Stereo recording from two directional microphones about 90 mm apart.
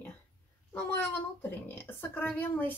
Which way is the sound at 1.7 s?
25° left (ahead or behind).